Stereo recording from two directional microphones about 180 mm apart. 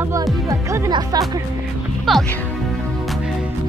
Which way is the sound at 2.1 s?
Centre (ahead or behind).